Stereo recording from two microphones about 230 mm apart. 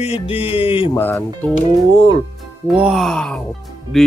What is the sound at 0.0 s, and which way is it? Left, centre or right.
Music, left.